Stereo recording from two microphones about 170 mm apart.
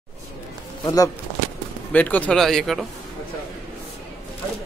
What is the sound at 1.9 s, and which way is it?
A man's voice, 10° left (ahead or behind).